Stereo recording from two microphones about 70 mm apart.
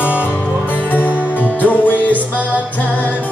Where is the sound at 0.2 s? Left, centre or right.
Left.